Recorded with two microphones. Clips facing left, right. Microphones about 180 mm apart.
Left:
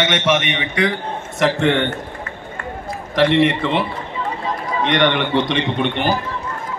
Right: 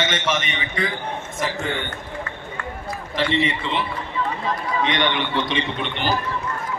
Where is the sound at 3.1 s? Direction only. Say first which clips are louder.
Left 8 dB; 70° left (ahead or behind).